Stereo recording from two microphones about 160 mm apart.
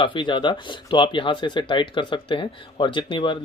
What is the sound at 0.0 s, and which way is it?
Speech, 30° left (ahead or behind).